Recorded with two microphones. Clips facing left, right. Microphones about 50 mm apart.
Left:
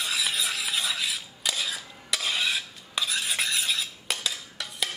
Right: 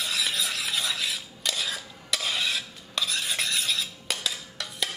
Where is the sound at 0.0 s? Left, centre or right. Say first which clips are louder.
Even; centre.